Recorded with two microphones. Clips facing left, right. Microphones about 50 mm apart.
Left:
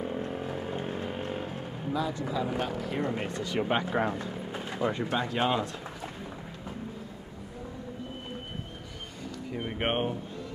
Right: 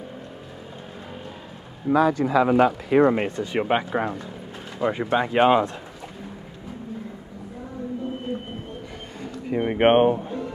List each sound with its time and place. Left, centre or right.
1.9 s speech: right
3.3 s speech: right
3.9 s speech: centre
4.7 s speech: centre
5.0 s speech: right
9.5 s speech: right